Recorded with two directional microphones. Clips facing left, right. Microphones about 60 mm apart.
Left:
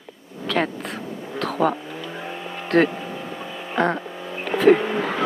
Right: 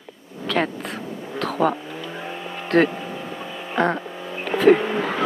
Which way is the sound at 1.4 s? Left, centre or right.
Right.